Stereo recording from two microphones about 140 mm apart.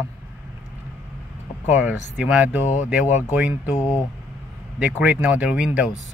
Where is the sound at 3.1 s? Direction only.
60° left (ahead or behind).